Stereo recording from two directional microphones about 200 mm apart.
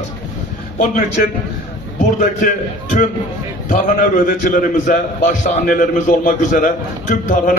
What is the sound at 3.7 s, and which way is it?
A man's voice, 40° left (ahead or behind).